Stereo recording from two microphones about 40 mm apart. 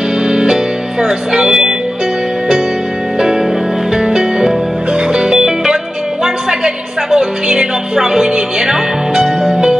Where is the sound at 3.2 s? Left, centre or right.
Centre.